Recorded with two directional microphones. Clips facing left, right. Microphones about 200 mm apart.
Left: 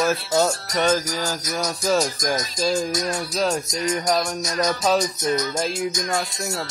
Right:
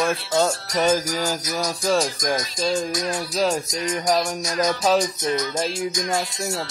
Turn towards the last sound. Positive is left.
turn(degrees=5)  # may be behind; listen again after turning